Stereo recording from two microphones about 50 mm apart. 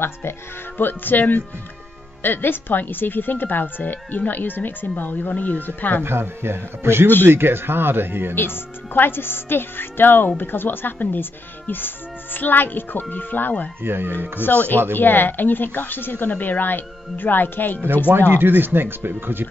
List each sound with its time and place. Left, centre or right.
0.0 s speech: left
2.2 s speech: left
6.0 s speech: right
8.4 s speech: left
13.8 s speech: right
14.4 s speech: left
18.3 s speech: right